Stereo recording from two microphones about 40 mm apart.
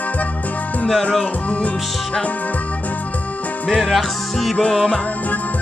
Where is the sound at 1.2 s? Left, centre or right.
Left.